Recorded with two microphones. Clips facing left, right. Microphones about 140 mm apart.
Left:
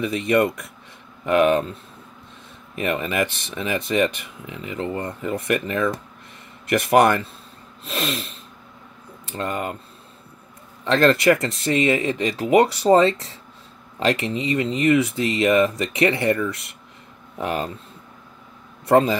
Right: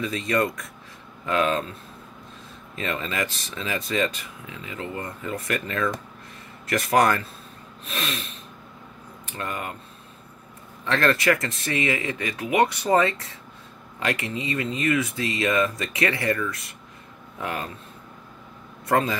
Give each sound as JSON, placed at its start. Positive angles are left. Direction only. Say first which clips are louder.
{"t": 0.0, "sound": "speech", "louder": "left 5 dB", "side_deg": 20}
{"t": 2.7, "sound": "speech", "louder": "left 5 dB", "side_deg": 20}
{"t": 10.8, "sound": "speech", "louder": "left 5 dB", "side_deg": 25}
{"t": 18.9, "sound": "speech", "louder": "left 6 dB", "side_deg": 25}